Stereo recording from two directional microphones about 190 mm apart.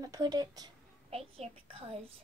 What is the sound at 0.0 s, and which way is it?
Speech, 20° right (ahead or behind).